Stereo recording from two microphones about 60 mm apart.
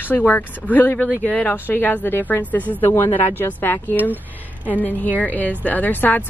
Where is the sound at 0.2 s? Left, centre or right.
Left.